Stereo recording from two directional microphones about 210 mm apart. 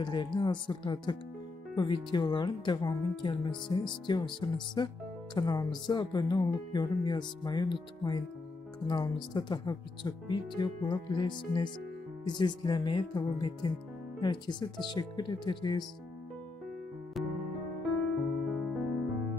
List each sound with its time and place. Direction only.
0.0 s speech: 20° left (ahead or behind)
17.2 s music: centre (ahead or behind)
18.5 s music: centre (ahead or behind)